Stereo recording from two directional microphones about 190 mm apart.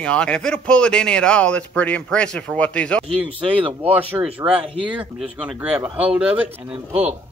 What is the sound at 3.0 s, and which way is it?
Speech, 30° right (ahead or behind).